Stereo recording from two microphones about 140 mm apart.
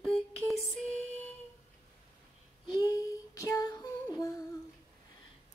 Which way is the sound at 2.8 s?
25° left (ahead or behind).